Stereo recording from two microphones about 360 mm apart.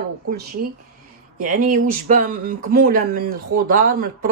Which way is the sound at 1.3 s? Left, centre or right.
Right.